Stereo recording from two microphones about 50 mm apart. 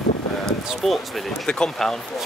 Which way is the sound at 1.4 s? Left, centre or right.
Centre.